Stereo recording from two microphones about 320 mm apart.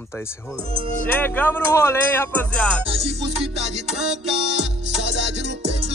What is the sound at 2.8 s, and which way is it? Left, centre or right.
Music, centre.